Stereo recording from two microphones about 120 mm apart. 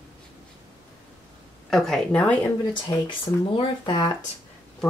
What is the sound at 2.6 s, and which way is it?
Speech, 40° left (ahead or behind).